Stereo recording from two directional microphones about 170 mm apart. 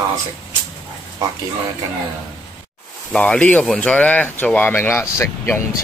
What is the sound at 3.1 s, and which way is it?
Speech, 5° left (ahead or behind).